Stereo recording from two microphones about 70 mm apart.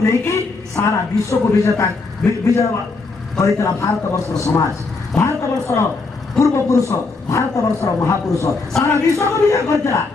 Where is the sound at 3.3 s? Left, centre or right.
Left.